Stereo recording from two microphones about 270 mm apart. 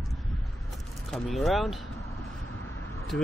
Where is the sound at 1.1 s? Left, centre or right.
Centre.